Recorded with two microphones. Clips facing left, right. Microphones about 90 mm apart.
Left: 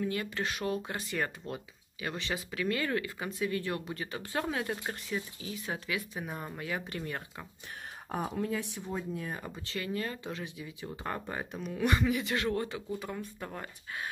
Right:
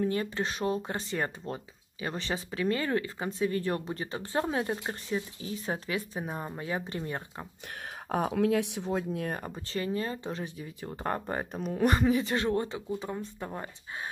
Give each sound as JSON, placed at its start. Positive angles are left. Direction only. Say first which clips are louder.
{"t": 0.0, "sound": "speech", "louder": "right 4 dB", "side_deg": -35}
{"t": 7.6, "sound": "speech", "louder": "right 6 dB", "side_deg": -70}
{"t": 9.4, "sound": "speech", "louder": "right 4 dB", "side_deg": -35}